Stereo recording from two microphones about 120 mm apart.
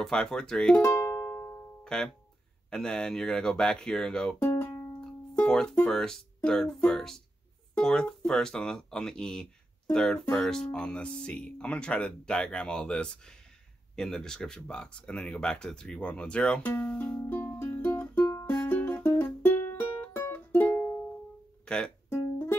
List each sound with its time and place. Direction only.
0.0 s speech: 5° left (ahead or behind)
0.8 s music: 20° left (ahead or behind)
1.9 s speech: 5° left (ahead or behind)
4.6 s music: 20° left (ahead or behind)
5.0 s speech: 5° left (ahead or behind)
17.2 s music: 15° left (ahead or behind)
21.6 s speech: 5° left (ahead or behind)
22.1 s music: 20° left (ahead or behind)